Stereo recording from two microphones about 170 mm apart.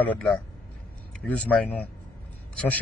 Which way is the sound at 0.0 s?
10° left (ahead or behind).